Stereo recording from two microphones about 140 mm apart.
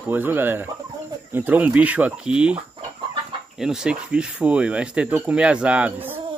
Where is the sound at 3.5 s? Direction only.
5° right (ahead or behind).